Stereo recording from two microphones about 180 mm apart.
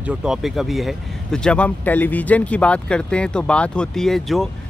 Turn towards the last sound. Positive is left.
turn(degrees=0)  # may be behind; listen again after turning